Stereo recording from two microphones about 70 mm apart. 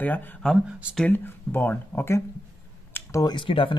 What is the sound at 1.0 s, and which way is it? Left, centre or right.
Speech, left.